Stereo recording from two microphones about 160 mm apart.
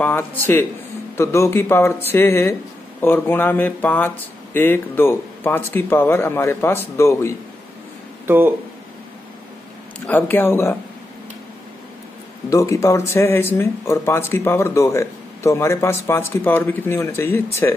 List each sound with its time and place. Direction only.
0.0 s speech: 10° left (ahead or behind)
8.3 s speech: 15° right (ahead or behind)
9.9 s speech: 10° left (ahead or behind)
12.4 s speech: 20° left (ahead or behind)